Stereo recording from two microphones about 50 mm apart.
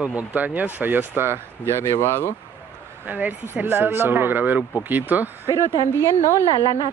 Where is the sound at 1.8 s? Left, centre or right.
Left.